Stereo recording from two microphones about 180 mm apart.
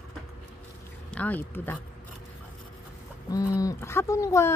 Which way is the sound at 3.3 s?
20° left (ahead or behind).